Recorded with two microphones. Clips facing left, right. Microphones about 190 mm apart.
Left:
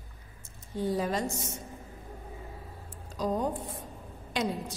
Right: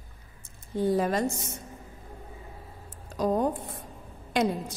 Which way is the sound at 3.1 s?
55° right (ahead or behind).